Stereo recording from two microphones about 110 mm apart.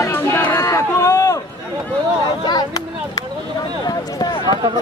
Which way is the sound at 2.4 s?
35° left (ahead or behind).